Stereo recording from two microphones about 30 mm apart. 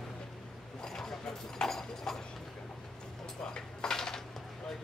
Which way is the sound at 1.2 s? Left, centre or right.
Centre.